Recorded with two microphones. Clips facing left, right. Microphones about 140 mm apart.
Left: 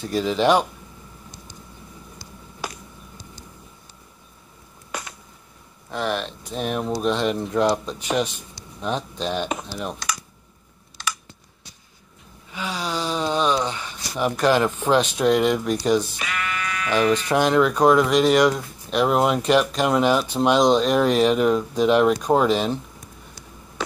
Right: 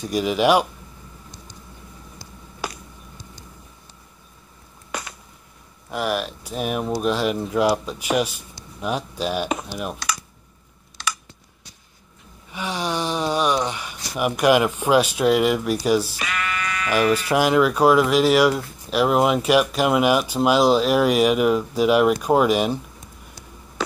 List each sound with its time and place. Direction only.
0.0 s speech: 15° right (ahead or behind)
5.9 s speech: 10° right (ahead or behind)
11.0 s computer keyboard: 90° right
12.5 s speech: 15° right (ahead or behind)
16.2 s sheep: 90° right
16.9 s speech: 10° right (ahead or behind)